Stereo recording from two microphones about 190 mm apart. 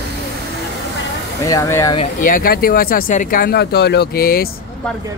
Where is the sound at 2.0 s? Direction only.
45° left (ahead or behind).